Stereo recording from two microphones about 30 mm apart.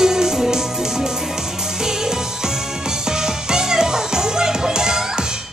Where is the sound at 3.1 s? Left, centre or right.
Right.